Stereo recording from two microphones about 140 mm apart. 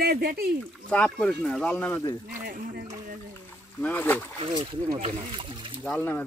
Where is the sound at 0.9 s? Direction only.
10° left (ahead or behind).